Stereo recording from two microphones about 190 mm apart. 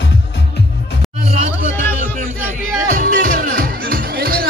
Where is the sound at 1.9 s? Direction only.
40° right (ahead or behind).